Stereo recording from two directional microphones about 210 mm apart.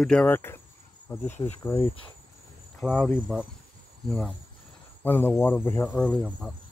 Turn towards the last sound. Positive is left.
turn(degrees=5)  # may be behind; listen again after turning